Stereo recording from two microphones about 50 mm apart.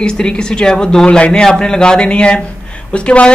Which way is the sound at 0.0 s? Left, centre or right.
Centre.